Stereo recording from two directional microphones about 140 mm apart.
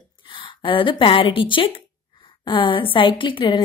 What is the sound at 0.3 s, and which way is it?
A woman's voice, 35° left (ahead or behind).